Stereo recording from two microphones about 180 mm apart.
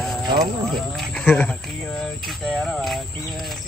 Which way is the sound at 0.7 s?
Centre (ahead or behind).